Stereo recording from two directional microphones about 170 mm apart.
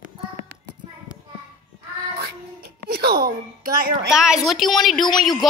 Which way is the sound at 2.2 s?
65° right (ahead or behind).